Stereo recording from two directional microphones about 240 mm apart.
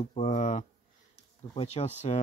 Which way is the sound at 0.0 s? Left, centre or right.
Left.